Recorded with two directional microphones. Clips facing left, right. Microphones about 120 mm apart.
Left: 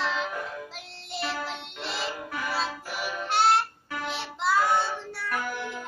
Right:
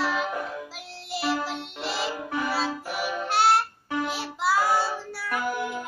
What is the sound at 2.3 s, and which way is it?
Music, 25° right (ahead or behind).